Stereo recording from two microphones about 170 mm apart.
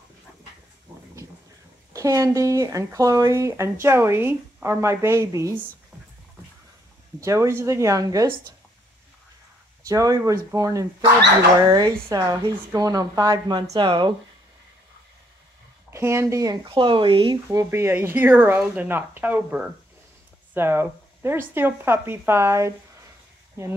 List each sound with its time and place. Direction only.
2.0 s speech: 20° right (ahead or behind)
7.2 s speech: 15° right (ahead or behind)
9.8 s speech: 20° right (ahead or behind)
15.9 s speech: 15° right (ahead or behind); by 17.4 s 30° right (ahead or behind)
17.5 s speech: 15° right (ahead or behind)